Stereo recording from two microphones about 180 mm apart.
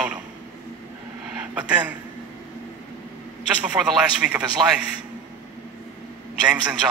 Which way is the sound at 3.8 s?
5° right (ahead or behind).